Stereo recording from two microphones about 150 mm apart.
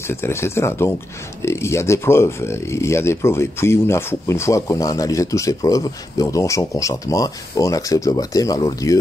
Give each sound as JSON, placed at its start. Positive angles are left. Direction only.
{"t": 0.1, "sound": "speech", "side_deg": 15}